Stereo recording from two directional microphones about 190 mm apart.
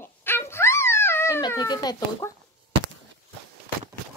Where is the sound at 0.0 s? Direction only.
10° left (ahead or behind).